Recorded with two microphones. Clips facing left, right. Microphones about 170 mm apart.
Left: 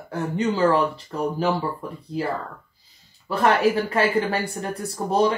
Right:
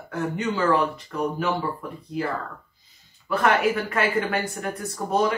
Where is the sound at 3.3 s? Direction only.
30° left (ahead or behind).